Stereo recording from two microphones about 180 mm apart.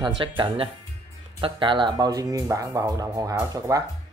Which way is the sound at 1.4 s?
25° right (ahead or behind).